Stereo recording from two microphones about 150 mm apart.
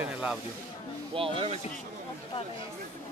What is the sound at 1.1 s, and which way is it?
Speech, 40° right (ahead or behind).